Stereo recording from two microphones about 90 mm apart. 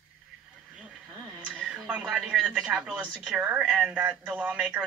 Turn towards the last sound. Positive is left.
turn(degrees=-20)  # may be behind; listen again after turning